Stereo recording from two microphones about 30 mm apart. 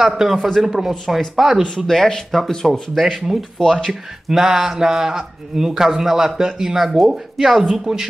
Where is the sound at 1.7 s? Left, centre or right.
Centre.